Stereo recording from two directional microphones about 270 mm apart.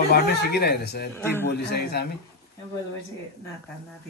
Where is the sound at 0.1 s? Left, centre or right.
Left.